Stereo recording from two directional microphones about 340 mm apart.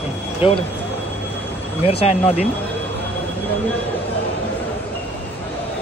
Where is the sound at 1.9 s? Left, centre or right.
Centre.